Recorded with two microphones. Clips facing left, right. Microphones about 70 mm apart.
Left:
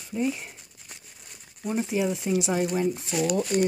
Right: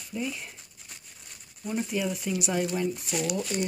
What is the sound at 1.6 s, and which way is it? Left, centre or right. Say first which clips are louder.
Speech: left 4 dB; left.